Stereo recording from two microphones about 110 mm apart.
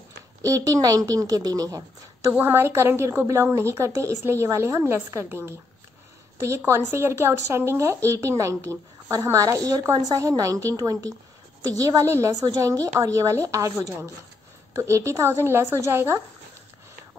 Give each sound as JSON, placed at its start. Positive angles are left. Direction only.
{"t": 0.4, "sound": "a woman's voice", "side_deg": -30}
{"t": 2.3, "sound": "a woman's voice", "side_deg": -20}